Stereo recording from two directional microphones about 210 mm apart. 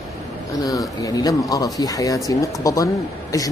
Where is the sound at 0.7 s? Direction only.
15° left (ahead or behind).